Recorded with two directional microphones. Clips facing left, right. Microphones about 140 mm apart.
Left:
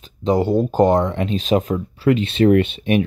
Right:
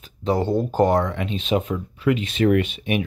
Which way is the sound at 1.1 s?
40° left (ahead or behind).